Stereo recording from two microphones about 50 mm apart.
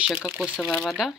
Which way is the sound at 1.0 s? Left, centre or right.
Centre.